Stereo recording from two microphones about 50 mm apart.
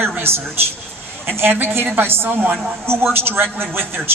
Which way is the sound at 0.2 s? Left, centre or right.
Right.